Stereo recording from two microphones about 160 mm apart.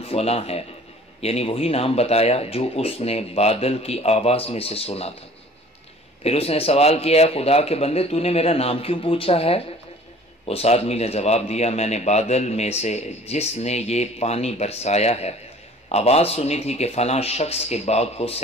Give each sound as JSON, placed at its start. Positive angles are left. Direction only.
{"t": 0.0, "sound": "speech", "side_deg": 40}
{"t": 6.2, "sound": "speech", "side_deg": 40}